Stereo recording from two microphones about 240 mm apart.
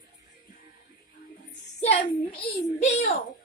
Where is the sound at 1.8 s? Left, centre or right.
Left.